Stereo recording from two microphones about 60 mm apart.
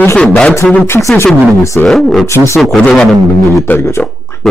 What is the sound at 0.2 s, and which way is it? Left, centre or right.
Speech, left.